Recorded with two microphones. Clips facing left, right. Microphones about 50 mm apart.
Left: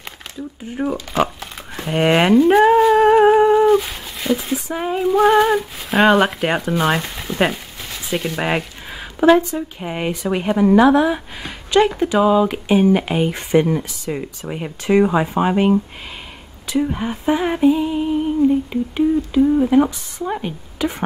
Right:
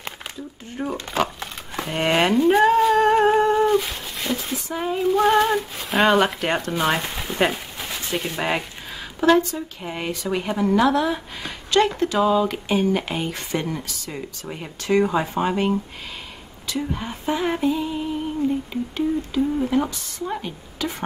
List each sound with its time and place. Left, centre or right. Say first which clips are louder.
0.7 s humming: left 5 dB; centre
7.5 s a sound: right 1 dB; centre
8.4 s humming: left 3 dB; centre
9.2 s a woman's voice: left 4 dB; centre
11.4 s humming: left 4 dB; centre